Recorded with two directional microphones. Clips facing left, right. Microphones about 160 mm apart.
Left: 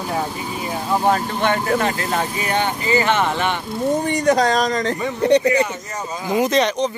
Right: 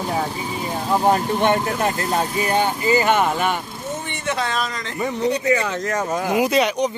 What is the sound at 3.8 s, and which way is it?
Speech, 40° left (ahead or behind).